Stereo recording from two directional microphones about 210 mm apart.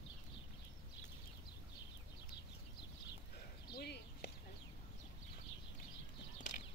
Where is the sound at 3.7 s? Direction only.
50° left (ahead or behind).